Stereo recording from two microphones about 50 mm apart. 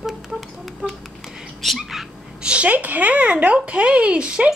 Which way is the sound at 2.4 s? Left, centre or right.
Right.